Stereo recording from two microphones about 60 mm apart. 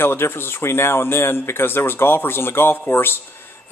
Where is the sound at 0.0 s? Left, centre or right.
Left.